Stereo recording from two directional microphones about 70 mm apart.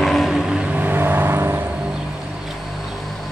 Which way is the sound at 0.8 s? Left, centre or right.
Right.